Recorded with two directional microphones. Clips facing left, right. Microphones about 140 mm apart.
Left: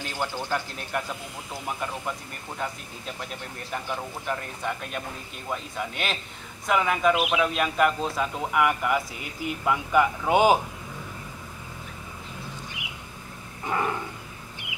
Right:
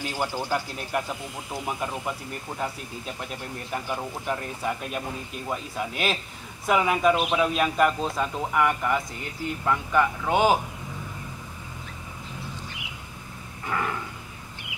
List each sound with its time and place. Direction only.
0.0 s a man's voice: 10° right (ahead or behind); by 10.6 s 15° left (ahead or behind)
13.7 s dog: 20° left (ahead or behind)